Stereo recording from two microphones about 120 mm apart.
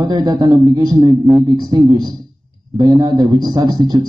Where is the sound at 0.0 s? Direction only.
35° right (ahead or behind).